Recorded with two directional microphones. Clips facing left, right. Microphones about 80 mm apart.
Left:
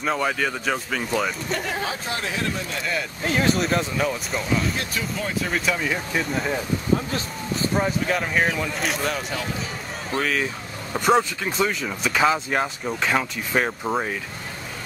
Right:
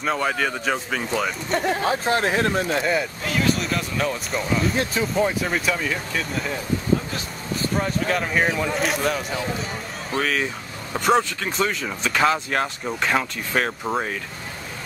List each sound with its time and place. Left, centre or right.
0.0 s speech: centre
1.9 s speech: right
3.3 s speech: left
3.5 s speech: left
4.0 s speech: centre
4.7 s speech: right
5.4 s speech: centre
7.7 s speech: centre